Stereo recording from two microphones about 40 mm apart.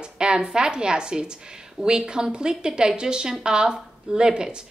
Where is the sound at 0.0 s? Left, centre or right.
Right.